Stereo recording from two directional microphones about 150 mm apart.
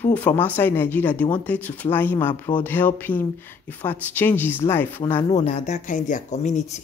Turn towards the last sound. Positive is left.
turn(degrees=50)  # may be behind; listen again after turning